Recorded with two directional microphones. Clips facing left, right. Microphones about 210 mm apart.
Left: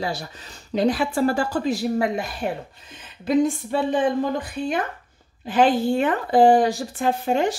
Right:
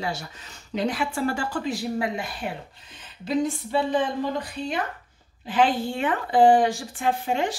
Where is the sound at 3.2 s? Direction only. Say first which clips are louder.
Left 5 dB; 50° left (ahead or behind).